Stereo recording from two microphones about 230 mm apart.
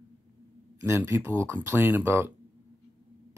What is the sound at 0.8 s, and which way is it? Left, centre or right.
Speech, centre.